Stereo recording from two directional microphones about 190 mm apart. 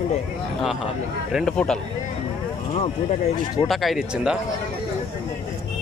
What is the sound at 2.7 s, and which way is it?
Speech, 35° left (ahead or behind).